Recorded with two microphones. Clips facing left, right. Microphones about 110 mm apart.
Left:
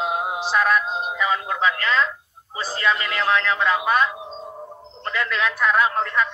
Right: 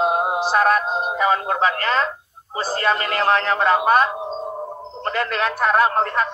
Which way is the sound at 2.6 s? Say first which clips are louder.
Right 3 dB; 45° right (ahead or behind).